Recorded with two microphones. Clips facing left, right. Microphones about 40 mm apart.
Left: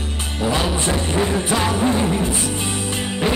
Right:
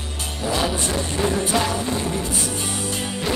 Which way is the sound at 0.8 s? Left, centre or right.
Left.